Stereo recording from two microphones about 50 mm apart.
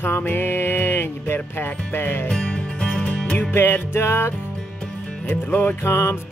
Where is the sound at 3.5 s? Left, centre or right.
Left.